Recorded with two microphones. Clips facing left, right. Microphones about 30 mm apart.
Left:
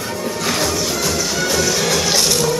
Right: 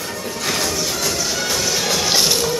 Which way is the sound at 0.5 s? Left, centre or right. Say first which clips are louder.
Left 1 dB; centre.